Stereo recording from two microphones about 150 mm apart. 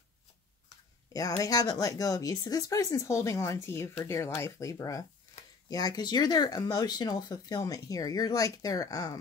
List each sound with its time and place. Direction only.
1.4 s speech: 25° left (ahead or behind)